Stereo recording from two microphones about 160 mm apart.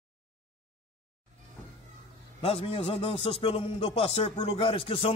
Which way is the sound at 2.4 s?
35° left (ahead or behind).